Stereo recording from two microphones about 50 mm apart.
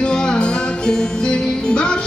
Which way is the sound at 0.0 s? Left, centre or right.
Centre.